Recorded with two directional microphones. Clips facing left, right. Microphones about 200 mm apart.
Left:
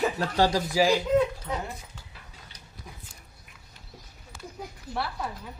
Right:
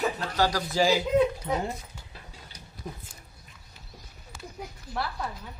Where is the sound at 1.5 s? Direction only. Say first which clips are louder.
Right 4 dB; 25° right (ahead or behind).